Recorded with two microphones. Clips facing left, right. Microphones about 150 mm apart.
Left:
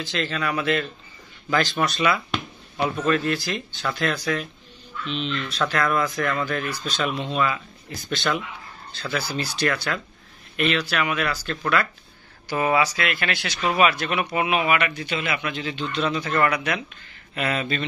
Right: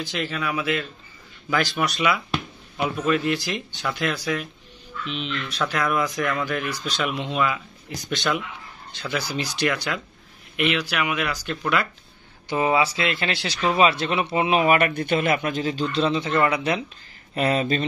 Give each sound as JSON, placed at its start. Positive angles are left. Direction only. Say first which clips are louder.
{"t": 0.0, "sound": "speech", "louder": "left 1 dB", "side_deg": -10}